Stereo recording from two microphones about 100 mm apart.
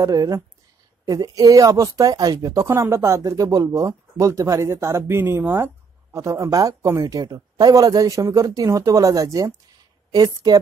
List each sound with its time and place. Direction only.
0.0 s speech: 35° right (ahead or behind)